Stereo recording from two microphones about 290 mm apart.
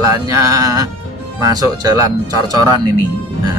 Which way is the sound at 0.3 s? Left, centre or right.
Centre.